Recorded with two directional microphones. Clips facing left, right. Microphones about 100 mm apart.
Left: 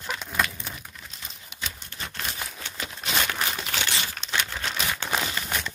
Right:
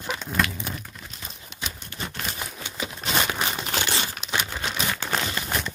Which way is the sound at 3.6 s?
35° right (ahead or behind).